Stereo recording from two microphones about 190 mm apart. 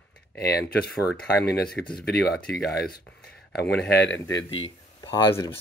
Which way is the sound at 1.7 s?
5° left (ahead or behind).